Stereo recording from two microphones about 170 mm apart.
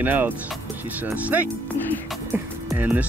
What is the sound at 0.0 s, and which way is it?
Speech, 10° right (ahead or behind).